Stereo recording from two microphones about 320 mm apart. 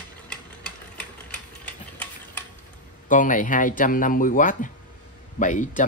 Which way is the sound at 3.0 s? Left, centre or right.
Left.